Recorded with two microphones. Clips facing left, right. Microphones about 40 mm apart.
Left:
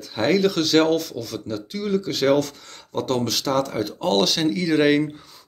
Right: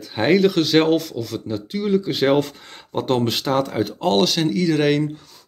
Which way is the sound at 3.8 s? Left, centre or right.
Centre.